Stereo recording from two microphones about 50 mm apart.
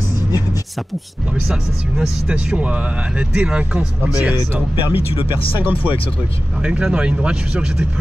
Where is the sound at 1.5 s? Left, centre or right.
Centre.